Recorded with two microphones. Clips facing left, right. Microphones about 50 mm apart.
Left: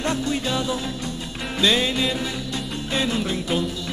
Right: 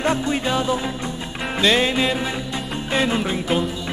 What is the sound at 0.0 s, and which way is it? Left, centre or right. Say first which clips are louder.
Music: right 3 dB; right.